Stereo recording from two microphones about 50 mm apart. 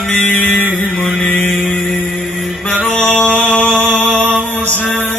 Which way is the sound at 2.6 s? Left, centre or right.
Left.